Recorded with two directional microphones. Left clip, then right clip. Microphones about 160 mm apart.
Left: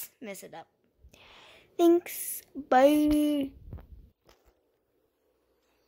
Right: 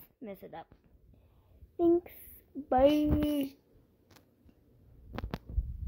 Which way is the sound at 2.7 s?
15° left (ahead or behind).